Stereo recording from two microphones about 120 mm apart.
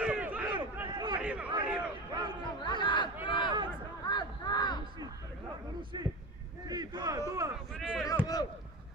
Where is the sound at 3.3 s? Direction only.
40° left (ahead or behind).